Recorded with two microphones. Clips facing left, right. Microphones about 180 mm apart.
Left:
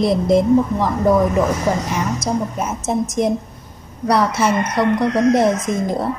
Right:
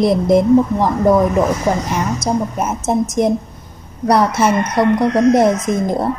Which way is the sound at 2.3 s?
45° right (ahead or behind).